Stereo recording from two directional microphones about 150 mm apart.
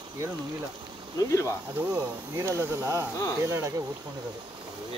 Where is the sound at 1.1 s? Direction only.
20° left (ahead or behind).